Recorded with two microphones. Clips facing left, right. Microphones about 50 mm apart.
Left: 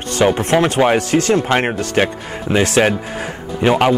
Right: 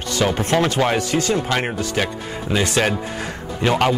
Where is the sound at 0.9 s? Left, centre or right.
Left.